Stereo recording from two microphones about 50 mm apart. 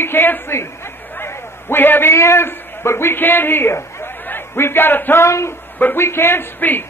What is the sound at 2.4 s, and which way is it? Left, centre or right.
A man's voice, left.